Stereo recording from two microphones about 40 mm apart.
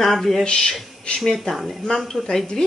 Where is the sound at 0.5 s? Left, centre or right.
Left.